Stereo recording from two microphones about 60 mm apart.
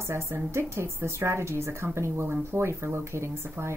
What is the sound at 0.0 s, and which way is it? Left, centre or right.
Speech, right.